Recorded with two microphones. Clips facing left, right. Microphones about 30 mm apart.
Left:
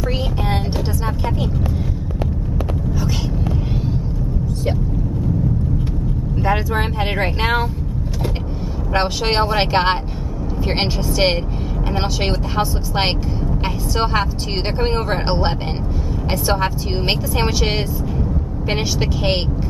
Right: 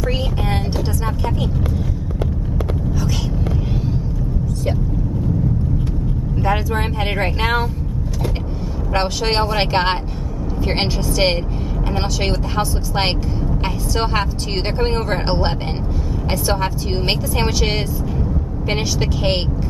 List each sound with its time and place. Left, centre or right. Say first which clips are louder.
6.3 s vehicle: left 1 dB; centre
8.9 s speech: left 1 dB; centre